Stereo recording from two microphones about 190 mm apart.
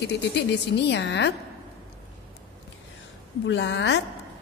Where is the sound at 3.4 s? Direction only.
70° left (ahead or behind).